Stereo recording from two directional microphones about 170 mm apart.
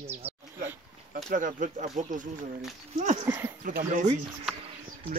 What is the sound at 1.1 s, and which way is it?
Speech, 50° right (ahead or behind).